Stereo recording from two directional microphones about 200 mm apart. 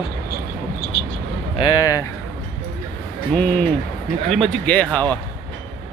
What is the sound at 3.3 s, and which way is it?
A man's voice, 10° left (ahead or behind).